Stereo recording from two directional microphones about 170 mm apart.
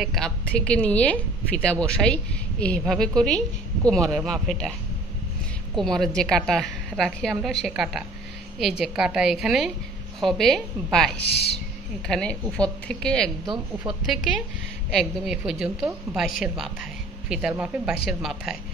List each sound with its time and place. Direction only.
0.0 s a woman's voice: centre (ahead or behind)
5.8 s a woman's voice: centre (ahead or behind)
11.1 s speech: 70° left (ahead or behind)
12.1 s a woman's voice: 5° left (ahead or behind)